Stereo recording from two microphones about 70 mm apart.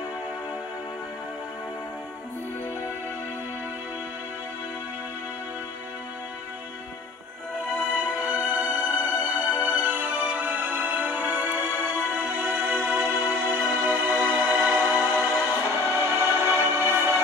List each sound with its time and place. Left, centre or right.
7.9 s music: right